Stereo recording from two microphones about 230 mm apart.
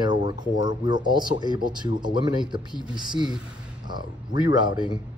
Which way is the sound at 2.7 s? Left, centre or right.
Centre.